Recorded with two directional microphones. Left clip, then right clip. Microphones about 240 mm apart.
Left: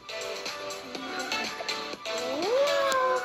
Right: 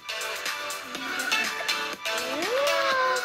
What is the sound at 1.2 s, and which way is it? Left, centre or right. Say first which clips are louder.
Music: right 6 dB; right.